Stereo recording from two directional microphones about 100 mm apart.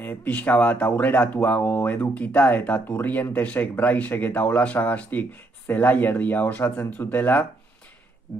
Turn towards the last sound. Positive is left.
turn(degrees=20)  # may be behind; listen again after turning